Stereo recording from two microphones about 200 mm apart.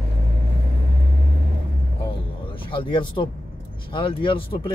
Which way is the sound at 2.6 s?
25° left (ahead or behind).